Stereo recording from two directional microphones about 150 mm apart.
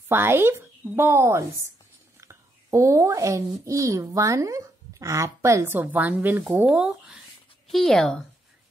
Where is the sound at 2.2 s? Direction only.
20° right (ahead or behind).